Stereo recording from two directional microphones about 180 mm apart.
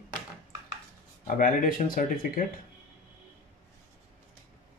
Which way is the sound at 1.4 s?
50° left (ahead or behind).